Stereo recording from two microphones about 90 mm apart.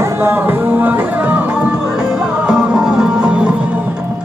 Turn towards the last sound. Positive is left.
turn(degrees=-10)  # may be behind; listen again after turning